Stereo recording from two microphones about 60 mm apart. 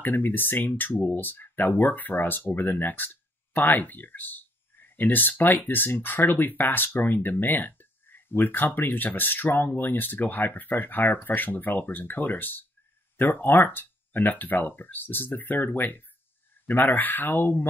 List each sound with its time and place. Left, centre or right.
0.0 s speech: left